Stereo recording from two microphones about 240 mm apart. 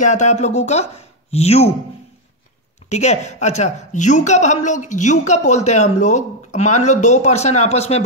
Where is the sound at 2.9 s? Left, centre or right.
Left.